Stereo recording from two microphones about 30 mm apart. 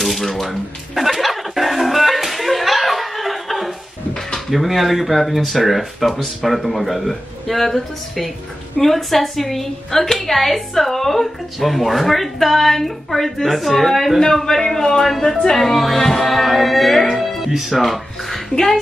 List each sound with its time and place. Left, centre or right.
0.0 s a sound: centre
0.5 s music: centre
4.5 s speech: centre
14.2 s a man's voice: centre
15.5 s speech: centre